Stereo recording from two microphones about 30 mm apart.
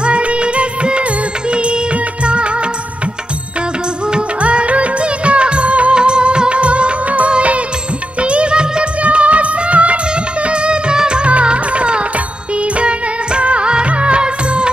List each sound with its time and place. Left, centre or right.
0.0 s music of bollywood: right
1.5 s music: right
2.2 s music of bollywood: right
4.4 s music: right
5.9 s music of bollywood: right
9.0 s music: right
10.4 s music: right
12.7 s music of bollywood: right